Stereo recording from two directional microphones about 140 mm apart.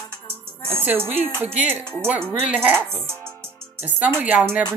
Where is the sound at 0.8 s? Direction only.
15° right (ahead or behind).